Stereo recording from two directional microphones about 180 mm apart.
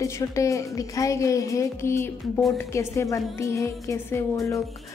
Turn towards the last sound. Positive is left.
turn(degrees=15)  # may be behind; listen again after turning